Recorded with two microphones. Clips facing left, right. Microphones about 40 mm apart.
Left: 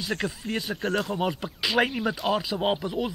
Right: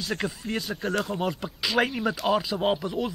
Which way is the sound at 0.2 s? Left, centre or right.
Centre.